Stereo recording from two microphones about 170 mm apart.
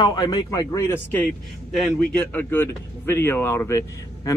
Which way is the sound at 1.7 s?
Centre (ahead or behind).